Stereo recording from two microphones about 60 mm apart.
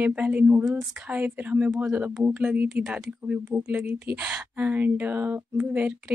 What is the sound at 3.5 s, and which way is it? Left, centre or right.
A woman's voice, right.